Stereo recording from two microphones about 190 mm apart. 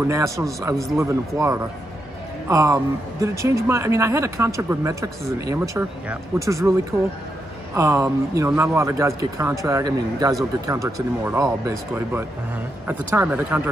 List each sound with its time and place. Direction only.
0.1 s speech: 15° right (ahead or behind)
7.7 s speech: 15° right (ahead or behind)